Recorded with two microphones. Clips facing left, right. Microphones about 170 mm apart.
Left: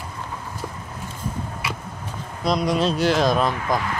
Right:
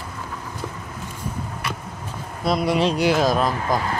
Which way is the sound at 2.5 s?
5° right (ahead or behind).